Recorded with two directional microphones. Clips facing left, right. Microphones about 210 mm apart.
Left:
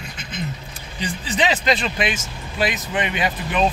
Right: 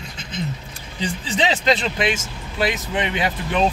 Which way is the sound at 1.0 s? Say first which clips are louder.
Even; 25° right (ahead or behind).